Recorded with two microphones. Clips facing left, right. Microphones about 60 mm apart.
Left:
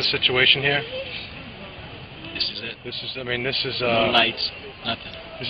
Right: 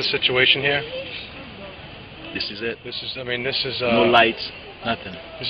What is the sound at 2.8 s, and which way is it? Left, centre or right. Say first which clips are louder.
A man's voice: even; centre.